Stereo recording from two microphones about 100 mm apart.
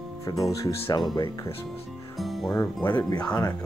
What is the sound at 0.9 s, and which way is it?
Speech, 45° left (ahead or behind).